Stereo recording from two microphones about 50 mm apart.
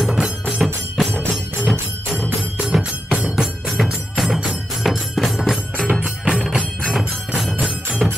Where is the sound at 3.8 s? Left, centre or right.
Centre.